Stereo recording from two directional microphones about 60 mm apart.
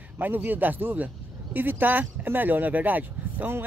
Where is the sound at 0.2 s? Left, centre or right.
Right.